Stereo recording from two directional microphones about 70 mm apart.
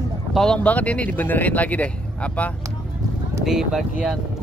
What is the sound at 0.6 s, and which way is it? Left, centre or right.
Speech, left.